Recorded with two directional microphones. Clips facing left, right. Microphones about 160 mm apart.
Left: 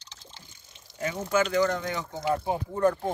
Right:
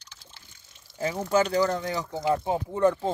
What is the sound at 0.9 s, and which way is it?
Speech, 30° right (ahead or behind).